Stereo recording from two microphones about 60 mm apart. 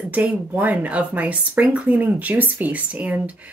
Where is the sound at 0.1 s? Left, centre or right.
Right.